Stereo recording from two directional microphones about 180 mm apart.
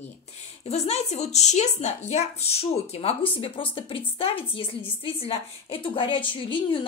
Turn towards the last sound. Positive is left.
turn(degrees=30)  # may be behind; listen again after turning